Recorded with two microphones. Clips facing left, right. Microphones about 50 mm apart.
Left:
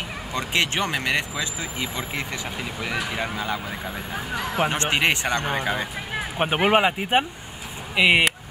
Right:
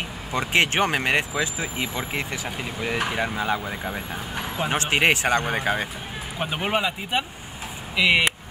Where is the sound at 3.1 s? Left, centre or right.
Centre.